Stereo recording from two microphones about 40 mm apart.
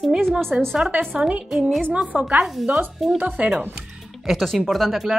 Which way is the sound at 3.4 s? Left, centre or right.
Right.